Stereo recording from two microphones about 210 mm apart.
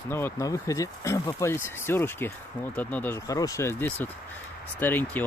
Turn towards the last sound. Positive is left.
turn(degrees=10)  # may be behind; listen again after turning